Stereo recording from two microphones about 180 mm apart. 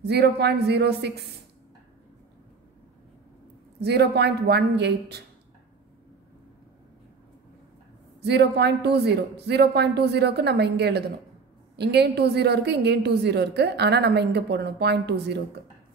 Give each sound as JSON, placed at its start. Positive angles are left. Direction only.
{"t": 0.0, "sound": "a woman's voice", "side_deg": -65}
{"t": 3.8, "sound": "a woman's voice", "side_deg": -65}
{"t": 8.2, "sound": "a woman's voice", "side_deg": -70}